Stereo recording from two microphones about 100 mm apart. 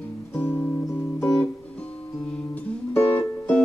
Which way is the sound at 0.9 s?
10° left (ahead or behind).